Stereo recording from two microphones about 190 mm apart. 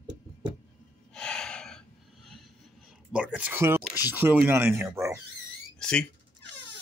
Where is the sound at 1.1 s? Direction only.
5° left (ahead or behind).